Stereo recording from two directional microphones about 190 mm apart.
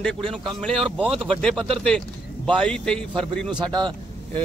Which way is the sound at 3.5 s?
25° right (ahead or behind).